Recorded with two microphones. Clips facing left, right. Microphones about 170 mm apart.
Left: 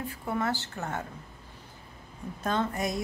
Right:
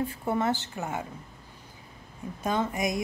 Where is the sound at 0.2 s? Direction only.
25° right (ahead or behind).